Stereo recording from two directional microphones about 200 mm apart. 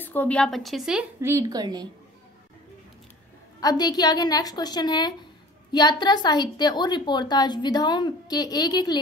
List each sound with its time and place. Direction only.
0.0 s a woman's voice: 10° left (ahead or behind); by 1.9 s 20° right (ahead or behind)
3.6 s a woman's voice: 20° left (ahead or behind)